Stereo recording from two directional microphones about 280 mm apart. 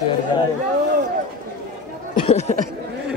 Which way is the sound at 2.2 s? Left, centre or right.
Left.